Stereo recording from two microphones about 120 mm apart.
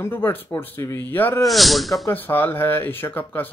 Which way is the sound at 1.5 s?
Centre (ahead or behind).